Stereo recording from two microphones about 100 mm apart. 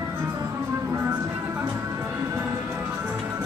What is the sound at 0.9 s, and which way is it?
Music, 25° right (ahead or behind).